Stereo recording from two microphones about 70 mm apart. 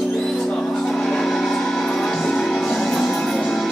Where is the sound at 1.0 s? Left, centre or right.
Centre.